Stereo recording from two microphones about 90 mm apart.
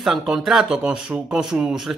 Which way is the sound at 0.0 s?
5° right (ahead or behind).